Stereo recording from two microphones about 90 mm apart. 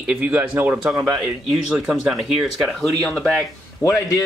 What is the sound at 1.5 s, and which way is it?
Speech, 5° right (ahead or behind).